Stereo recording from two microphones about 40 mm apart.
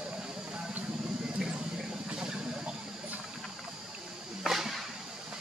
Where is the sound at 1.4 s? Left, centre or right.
Centre.